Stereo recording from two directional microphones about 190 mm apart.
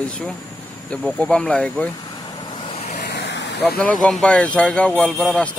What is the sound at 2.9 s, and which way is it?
Vehicle, 60° left (ahead or behind).